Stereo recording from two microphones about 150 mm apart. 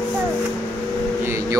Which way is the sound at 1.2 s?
15° right (ahead or behind).